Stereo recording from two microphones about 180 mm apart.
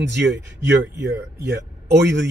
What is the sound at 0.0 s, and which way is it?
Speech, 80° right.